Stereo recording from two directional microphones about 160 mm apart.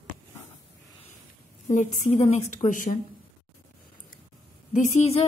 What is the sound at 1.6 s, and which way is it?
A woman's voice, 45° left (ahead or behind).